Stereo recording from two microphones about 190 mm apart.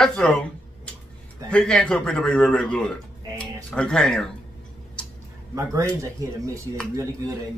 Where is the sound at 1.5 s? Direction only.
5° left (ahead or behind).